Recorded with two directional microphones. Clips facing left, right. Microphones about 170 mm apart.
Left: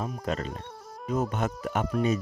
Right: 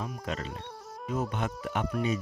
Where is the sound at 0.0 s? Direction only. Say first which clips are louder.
Left 4 dB; 40° left (ahead or behind).